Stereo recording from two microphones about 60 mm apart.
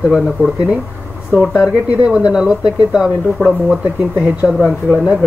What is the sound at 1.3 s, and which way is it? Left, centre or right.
Speech, centre.